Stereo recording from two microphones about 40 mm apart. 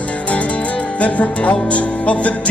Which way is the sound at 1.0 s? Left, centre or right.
Left.